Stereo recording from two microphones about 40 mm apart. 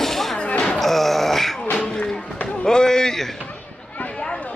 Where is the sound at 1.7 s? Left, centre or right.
Left.